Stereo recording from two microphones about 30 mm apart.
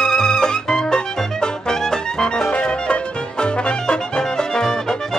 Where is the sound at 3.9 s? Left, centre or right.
Left.